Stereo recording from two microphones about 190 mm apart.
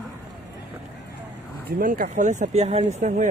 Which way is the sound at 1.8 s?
45° right (ahead or behind).